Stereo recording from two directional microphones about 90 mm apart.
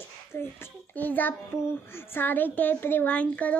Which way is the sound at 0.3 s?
25° left (ahead or behind).